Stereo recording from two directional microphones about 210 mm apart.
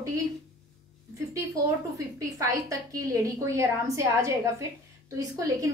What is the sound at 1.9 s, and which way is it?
A woman's voice, 15° right (ahead or behind).